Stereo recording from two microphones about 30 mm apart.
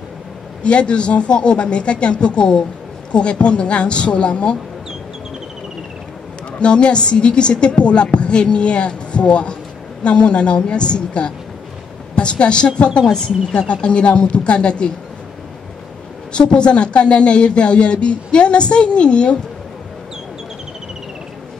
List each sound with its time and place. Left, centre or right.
0.7 s a woman's voice: left
6.6 s a woman's voice: left
16.3 s a woman's voice: left